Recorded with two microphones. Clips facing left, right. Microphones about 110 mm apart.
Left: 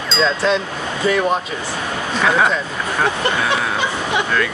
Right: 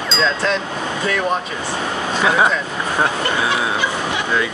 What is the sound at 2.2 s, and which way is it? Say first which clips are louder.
Speech: even; 10° right (ahead or behind).